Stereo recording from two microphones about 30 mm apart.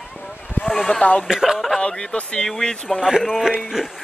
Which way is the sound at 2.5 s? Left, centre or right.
Centre.